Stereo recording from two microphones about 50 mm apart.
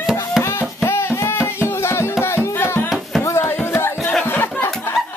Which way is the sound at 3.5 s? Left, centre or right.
Left.